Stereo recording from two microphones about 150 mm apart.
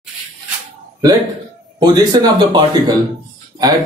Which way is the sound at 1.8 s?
30° right (ahead or behind).